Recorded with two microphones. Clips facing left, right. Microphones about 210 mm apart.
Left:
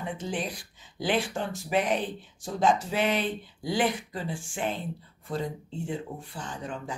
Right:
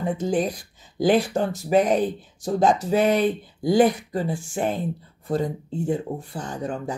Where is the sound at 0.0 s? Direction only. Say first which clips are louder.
Right 9 dB; 40° right (ahead or behind).